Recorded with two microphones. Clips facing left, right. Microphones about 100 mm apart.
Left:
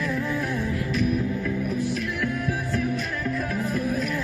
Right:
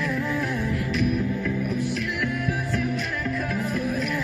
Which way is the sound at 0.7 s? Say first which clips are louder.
Even; 30° left (ahead or behind).